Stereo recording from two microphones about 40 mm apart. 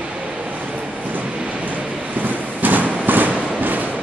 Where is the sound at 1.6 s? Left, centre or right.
Right.